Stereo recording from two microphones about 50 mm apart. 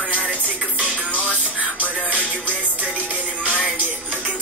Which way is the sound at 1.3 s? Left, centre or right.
Left.